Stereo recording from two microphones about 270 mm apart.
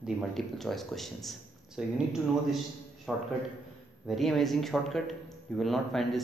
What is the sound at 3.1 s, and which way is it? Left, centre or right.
Speech, centre.